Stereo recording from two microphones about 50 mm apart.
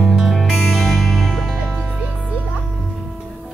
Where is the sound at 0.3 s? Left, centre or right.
Centre.